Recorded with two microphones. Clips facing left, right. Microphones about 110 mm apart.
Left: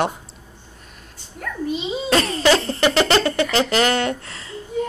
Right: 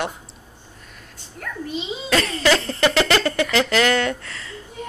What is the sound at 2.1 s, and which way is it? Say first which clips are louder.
Speech: left 2 dB; 35° left (ahead or behind).